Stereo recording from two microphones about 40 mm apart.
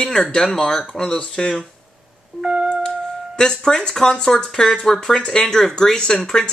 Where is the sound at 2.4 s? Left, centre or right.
Right.